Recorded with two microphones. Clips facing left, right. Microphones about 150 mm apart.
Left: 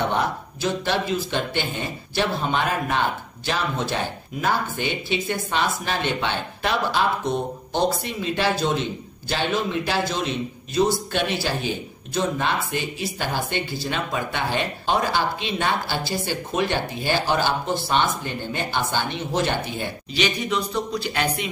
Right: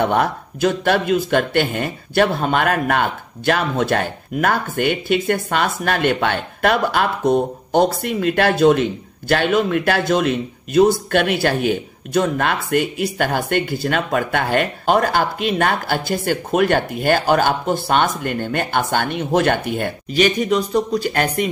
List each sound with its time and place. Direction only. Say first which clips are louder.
0.0 s a man's voice: right 6 dB; 55° right (ahead or behind)